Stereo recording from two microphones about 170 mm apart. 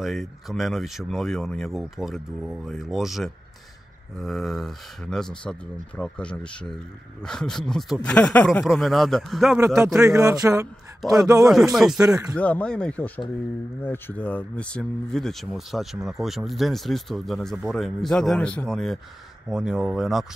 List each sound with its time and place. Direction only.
0.0 s speech: centre (ahead or behind)
10.2 s speech: 20° right (ahead or behind)
11.0 s speech: centre (ahead or behind)